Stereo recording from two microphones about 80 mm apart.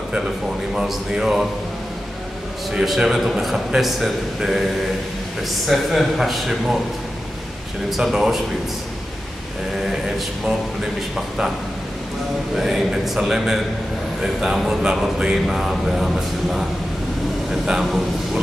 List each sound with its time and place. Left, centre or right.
0.7 s speech: centre
2.7 s speech: centre
5.7 s speech: centre
7.9 s speech: centre
9.8 s speech: centre
12.5 s a man's voice: centre